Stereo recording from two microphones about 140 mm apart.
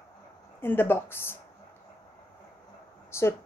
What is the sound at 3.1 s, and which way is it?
Speech, 20° left (ahead or behind).